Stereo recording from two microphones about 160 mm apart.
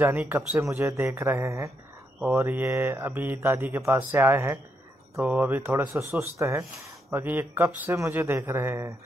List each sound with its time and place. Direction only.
0.0 s speech: 15° right (ahead or behind)